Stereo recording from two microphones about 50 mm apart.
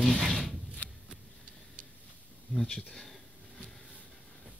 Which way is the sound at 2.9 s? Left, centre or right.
Centre.